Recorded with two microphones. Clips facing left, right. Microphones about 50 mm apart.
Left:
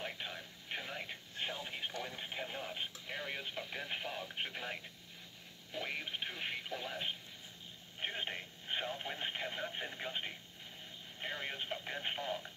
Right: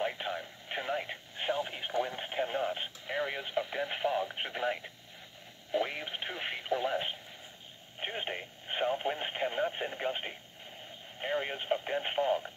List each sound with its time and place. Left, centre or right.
0.0 s radio: right
2.0 s radio: right
3.1 s radio: right
4.3 s speech: right
5.7 s radio: right
11.1 s speech: right